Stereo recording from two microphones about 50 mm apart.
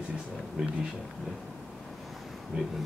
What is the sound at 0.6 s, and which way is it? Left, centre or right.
Speech, centre.